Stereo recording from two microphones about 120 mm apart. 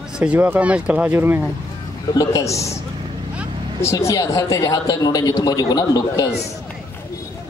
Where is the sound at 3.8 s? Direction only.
25° left (ahead or behind).